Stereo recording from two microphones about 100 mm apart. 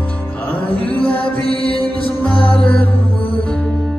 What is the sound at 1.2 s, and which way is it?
Mantra, 70° left (ahead or behind).